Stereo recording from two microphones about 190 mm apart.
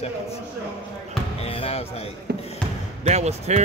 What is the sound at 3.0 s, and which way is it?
Speech, 35° right (ahead or behind).